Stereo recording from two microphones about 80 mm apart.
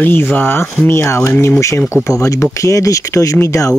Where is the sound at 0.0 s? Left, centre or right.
Left.